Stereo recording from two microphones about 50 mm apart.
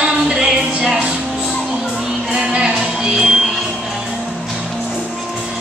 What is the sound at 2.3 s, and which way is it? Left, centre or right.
Music, centre.